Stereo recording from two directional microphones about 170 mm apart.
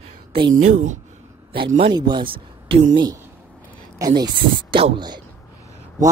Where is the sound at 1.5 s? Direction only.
30° right (ahead or behind).